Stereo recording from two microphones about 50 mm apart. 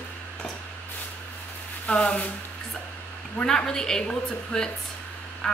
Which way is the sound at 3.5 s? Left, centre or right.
Centre.